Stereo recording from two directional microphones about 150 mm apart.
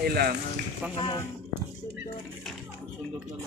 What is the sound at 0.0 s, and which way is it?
Speech, 90° right.